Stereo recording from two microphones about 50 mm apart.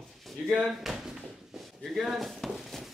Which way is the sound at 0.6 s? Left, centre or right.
Centre.